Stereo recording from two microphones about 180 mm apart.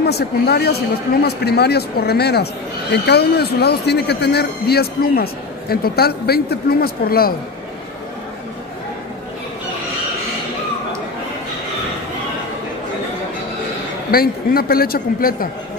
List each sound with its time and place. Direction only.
0.0 s speech: 65° left (ahead or behind)
14.1 s speech: 55° left (ahead or behind)